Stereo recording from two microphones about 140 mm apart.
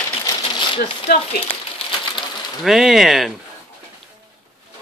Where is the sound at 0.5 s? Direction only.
40° left (ahead or behind).